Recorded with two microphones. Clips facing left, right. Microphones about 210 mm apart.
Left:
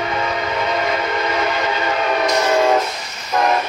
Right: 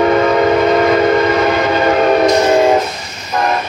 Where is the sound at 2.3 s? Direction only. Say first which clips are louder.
Right 5 dB; 25° right (ahead or behind).